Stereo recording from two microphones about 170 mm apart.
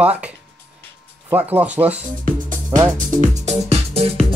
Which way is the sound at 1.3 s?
10° right (ahead or behind).